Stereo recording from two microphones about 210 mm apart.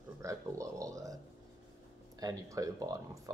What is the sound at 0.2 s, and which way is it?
Speech, 15° right (ahead or behind).